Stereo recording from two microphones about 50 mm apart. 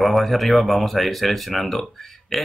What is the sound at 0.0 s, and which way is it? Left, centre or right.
Speech, centre.